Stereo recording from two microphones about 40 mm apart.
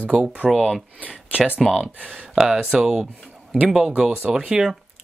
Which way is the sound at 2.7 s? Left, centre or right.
Centre.